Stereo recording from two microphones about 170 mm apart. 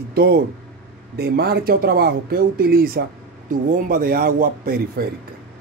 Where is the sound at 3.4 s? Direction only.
50° right (ahead or behind).